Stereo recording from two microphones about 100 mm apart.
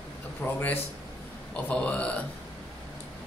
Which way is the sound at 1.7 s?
15° left (ahead or behind).